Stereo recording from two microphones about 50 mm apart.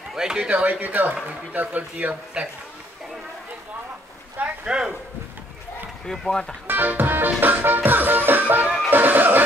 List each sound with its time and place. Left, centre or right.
0.1 s speech: centre
0.5 s music: right
2.4 s a man's voice: centre
4.6 s speech: centre
6.0 s speech: centre
6.7 s music: right